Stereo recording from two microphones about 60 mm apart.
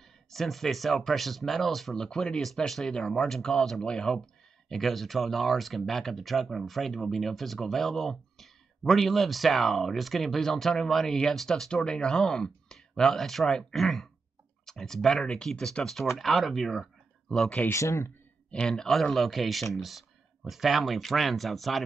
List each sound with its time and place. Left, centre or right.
0.3 s speech: centre
2.0 s speech: centre
17.7 s speech: left
18.5 s speech: centre